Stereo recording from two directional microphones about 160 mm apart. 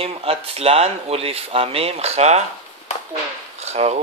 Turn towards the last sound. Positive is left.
turn(degrees=-45)  # may be behind; listen again after turning